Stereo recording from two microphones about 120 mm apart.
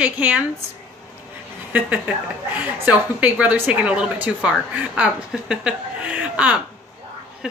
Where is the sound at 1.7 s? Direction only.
10° right (ahead or behind).